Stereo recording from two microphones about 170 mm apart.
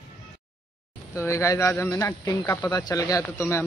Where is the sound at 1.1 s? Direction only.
15° left (ahead or behind).